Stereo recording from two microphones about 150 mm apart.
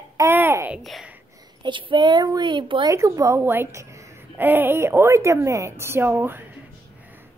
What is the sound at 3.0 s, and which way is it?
A woman's voice, 20° right (ahead or behind).